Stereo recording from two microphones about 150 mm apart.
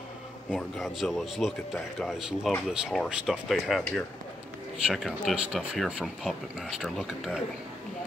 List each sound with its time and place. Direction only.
0.5 s speech: centre (ahead or behind)